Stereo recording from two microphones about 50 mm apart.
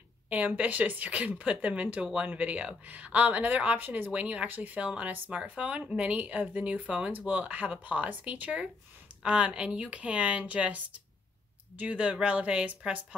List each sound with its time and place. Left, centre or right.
0.6 s speech: right
4.1 s speech: right